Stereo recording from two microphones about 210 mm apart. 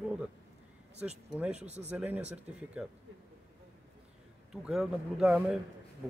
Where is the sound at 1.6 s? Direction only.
30° right (ahead or behind).